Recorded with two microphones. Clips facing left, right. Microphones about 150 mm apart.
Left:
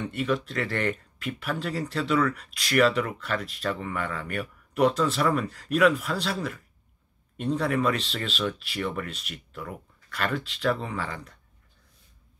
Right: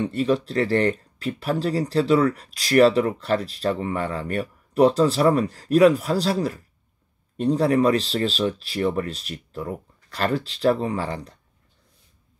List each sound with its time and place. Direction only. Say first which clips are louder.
0.0 s speech: right 6 dB; 35° right (ahead or behind)